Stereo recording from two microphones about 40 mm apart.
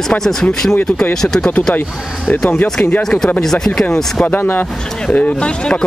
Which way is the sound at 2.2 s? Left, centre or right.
Left.